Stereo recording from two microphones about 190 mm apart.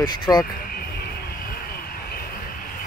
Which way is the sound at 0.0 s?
25° left (ahead or behind).